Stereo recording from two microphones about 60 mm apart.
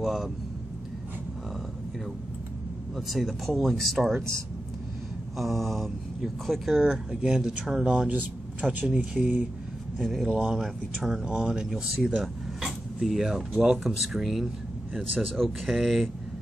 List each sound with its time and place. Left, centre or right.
0.0 s speech: centre
3.1 s speech: centre
5.4 s speech: centre
6.9 s speech: centre
8.1 s speech: right
9.9 s speech: centre
10.3 s speech: centre
12.2 s a sound: centre
13.8 s speech: centre